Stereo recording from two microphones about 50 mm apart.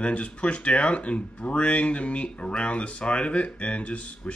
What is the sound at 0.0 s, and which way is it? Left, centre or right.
Speech, left.